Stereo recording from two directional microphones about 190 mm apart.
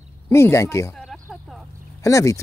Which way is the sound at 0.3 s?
15° left (ahead or behind).